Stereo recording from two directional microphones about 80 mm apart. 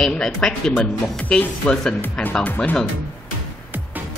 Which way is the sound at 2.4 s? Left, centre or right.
Left.